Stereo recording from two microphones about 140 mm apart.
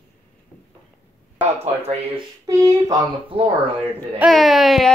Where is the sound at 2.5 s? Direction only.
25° right (ahead or behind).